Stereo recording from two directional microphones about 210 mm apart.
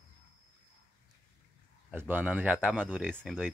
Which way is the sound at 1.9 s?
10° right (ahead or behind).